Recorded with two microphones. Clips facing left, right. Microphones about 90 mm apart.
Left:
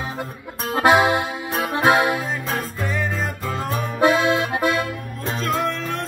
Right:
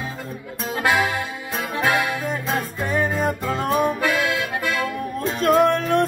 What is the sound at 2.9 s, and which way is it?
Music, 50° right (ahead or behind).